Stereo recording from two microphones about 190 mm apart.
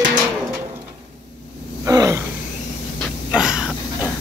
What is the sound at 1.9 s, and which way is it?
Speech, 15° right (ahead or behind).